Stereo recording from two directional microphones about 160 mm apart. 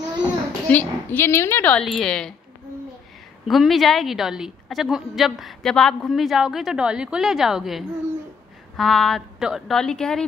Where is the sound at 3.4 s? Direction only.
Centre (ahead or behind).